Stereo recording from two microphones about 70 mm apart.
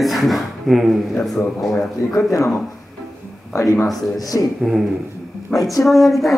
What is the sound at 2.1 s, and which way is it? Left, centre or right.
Speech, left.